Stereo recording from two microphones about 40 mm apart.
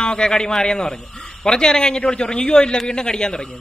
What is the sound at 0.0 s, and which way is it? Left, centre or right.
Speech, left.